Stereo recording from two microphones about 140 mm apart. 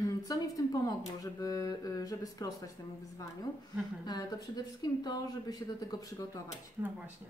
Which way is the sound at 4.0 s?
30° left (ahead or behind).